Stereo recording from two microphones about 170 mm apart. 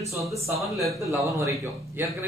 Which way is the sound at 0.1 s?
20° right (ahead or behind).